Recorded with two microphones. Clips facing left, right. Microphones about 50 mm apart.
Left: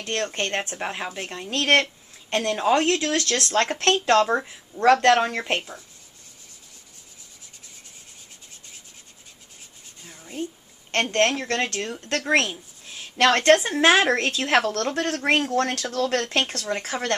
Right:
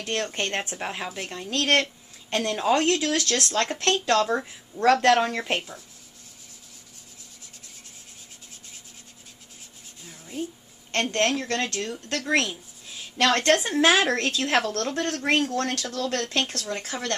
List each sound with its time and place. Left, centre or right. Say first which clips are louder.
0.0 s speech: left 1 dB; centre
1.4 s speech: left 2 dB; centre
3.9 s speech: left 3 dB; centre
4.4 s speech: left 1 dB; centre
10.0 s a sound: even; centre
10.9 s a woman's voice: left 2 dB; centre
15.9 s speech: left 4 dB; left